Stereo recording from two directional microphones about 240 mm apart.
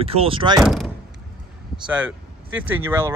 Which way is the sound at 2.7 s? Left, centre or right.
Centre.